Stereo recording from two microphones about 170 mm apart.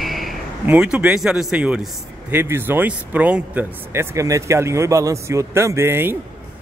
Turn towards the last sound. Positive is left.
turn(degrees=-15)  # may be behind; listen again after turning